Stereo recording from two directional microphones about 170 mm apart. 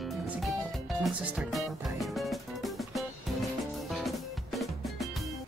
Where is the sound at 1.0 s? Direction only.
Centre (ahead or behind).